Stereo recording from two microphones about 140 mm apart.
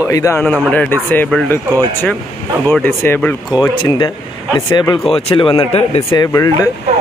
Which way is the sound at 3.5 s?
30° left (ahead or behind).